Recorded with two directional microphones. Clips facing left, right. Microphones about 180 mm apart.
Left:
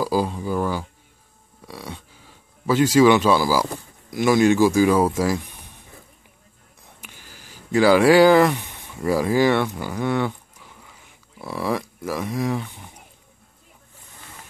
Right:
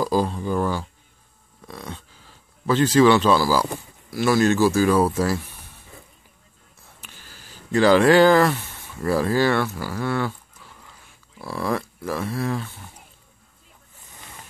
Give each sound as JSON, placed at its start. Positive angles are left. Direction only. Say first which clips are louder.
{"t": 0.0, "sound": "speech", "louder": "even", "side_deg": 10}
{"t": 1.7, "sound": "a sound", "louder": "even", "side_deg": 10}
{"t": 4.1, "sound": "speech", "louder": "left 2 dB", "side_deg": 15}
{"t": 7.0, "sound": "speech", "louder": "left 1 dB", "side_deg": 15}